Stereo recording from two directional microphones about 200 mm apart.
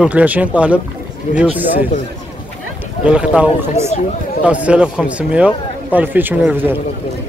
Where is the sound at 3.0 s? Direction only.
5° right (ahead or behind).